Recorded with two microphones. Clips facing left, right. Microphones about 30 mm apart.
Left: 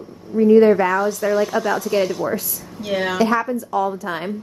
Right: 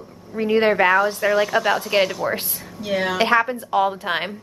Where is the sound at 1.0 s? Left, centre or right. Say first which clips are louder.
Even; right.